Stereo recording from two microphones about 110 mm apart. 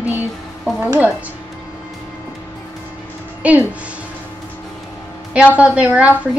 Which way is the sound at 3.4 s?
10° right (ahead or behind).